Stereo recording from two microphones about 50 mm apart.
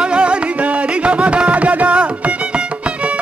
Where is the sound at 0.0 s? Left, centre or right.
Right.